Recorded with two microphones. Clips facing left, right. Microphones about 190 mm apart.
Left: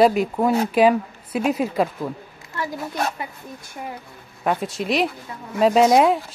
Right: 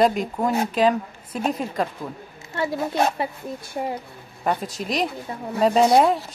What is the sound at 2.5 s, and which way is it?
A woman's voice, 25° right (ahead or behind).